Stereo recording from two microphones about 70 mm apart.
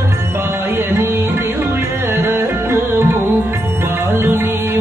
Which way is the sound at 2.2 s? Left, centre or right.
Right.